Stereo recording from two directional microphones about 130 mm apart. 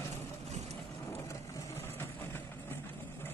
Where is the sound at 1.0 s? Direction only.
20° left (ahead or behind).